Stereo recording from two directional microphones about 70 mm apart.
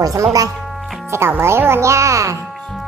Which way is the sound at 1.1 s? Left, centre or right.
Right.